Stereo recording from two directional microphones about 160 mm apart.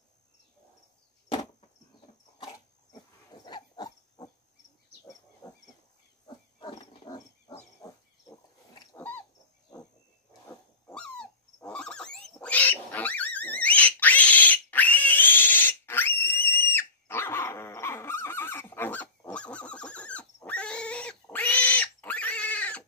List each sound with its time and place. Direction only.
2.3 s dog: 30° left (ahead or behind)
3.4 s pig: 25° left (ahead or behind)
5.4 s a sound: 20° left (ahead or behind)
6.2 s pig: 25° left (ahead or behind)
7.8 s a sound: 25° left (ahead or behind)
8.9 s pig: 10° left (ahead or behind)
10.9 s dog: 5° left (ahead or behind)
20.3 s pig: 10° left (ahead or behind)